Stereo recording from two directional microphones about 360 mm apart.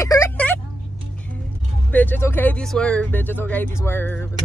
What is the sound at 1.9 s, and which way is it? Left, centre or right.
Speech, centre.